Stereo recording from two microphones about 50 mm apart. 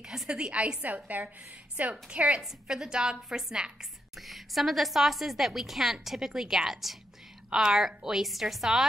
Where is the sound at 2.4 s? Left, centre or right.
Centre.